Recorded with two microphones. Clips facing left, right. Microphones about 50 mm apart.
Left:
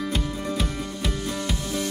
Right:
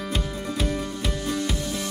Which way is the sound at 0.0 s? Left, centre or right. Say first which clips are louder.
Left 1 dB; centre.